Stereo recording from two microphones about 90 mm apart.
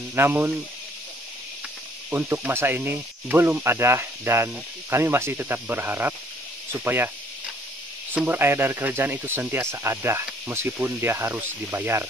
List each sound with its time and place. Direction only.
0.1 s speech: 25° right (ahead or behind)
2.0 s speech: 25° right (ahead or behind)
8.1 s speech: 20° right (ahead or behind)